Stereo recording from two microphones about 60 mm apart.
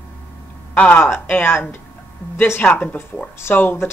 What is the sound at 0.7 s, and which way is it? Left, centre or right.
Speech, left.